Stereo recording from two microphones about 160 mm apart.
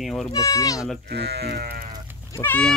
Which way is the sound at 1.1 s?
90° right.